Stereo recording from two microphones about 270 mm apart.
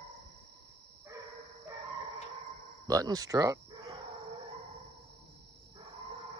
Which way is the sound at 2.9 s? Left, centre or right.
Centre.